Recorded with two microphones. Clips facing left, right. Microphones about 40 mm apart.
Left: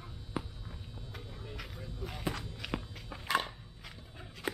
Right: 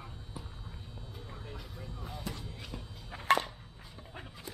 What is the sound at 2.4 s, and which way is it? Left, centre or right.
Music, left.